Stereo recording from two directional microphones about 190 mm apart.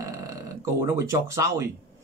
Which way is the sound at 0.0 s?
15° right (ahead or behind).